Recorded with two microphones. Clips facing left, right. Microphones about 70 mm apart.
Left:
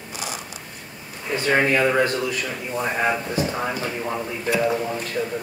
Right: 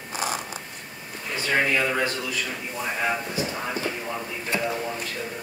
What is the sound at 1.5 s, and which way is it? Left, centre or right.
Speech, left.